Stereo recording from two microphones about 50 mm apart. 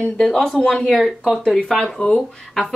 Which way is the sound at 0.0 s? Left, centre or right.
Centre.